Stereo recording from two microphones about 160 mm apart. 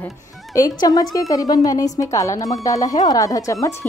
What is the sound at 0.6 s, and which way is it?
Speech, 25° left (ahead or behind).